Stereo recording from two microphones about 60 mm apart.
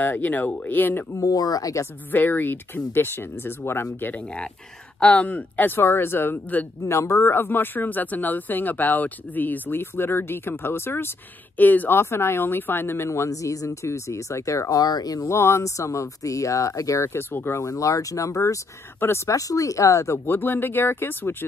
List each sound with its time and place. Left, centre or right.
0.0 s speech: left
1.1 s speech: left
2.1 s speech: left
5.0 s speech: left
5.7 s speech: left
6.8 s speech: left
7.3 s speech: left
11.5 s speech: left
12.0 s speech: left
15.2 s speech: left
17.1 s speech: left
17.6 s speech: left
18.9 s speech: left
20.2 s speech: left